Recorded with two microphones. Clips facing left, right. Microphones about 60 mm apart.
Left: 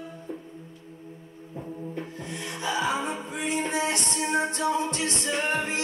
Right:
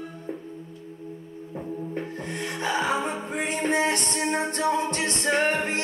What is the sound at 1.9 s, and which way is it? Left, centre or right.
Music, right.